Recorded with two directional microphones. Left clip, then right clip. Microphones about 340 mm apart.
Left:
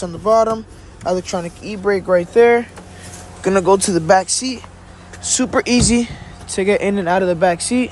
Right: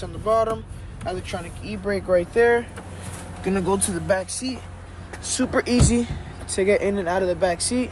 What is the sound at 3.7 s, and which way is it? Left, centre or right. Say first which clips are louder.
Speech: left 10 dB; centre.